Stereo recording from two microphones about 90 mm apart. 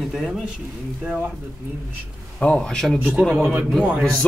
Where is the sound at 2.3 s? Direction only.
10° left (ahead or behind).